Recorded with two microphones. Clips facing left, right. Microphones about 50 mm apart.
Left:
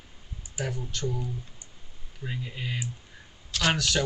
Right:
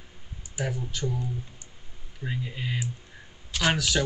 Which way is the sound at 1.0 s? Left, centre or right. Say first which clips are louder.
Even; centre.